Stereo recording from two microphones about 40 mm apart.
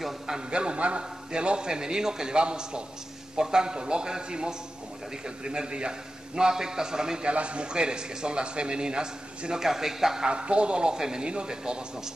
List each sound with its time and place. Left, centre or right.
0.5 s a man's voice: right
7.2 s a man's voice: right